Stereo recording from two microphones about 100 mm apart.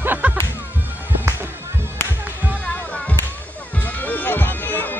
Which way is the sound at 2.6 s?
15° left (ahead or behind).